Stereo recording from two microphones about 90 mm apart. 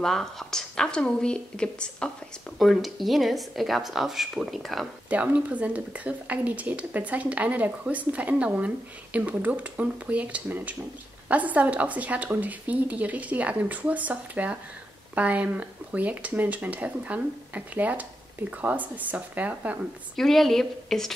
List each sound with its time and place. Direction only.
0.0 s a woman's voice: 5° left (ahead or behind)
5.1 s speech: 15° right (ahead or behind)
20.2 s speech: centre (ahead or behind)